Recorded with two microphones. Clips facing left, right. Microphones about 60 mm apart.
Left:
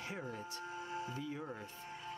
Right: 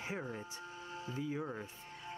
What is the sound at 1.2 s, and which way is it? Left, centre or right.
Speech, centre.